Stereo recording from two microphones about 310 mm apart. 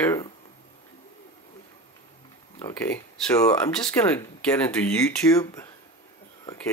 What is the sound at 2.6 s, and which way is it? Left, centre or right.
Speech, centre.